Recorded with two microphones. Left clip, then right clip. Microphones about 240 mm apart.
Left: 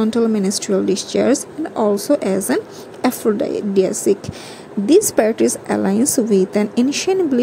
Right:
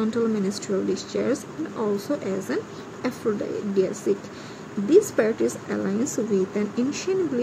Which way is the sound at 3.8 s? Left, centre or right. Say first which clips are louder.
Left 7 dB; left.